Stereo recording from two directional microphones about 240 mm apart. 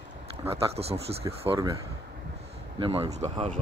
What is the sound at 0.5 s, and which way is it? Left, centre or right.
Speech, right.